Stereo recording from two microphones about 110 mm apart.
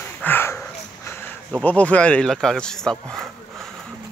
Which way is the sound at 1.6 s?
15° left (ahead or behind).